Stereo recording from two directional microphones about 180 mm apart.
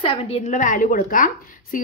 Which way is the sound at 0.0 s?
30° left (ahead or behind).